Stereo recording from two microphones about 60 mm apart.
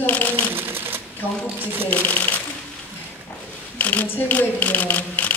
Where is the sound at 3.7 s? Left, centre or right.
Left.